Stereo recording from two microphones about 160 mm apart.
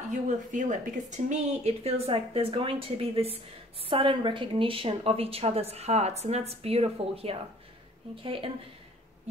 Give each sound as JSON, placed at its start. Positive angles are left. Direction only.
{"t": 0.1, "sound": "a woman's voice", "side_deg": -50}